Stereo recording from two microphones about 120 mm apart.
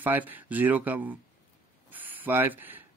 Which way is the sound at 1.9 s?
15° right (ahead or behind).